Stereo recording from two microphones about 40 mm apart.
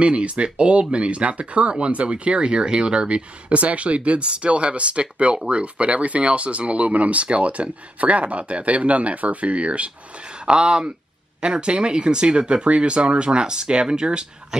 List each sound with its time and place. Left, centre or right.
0.0 s speech: right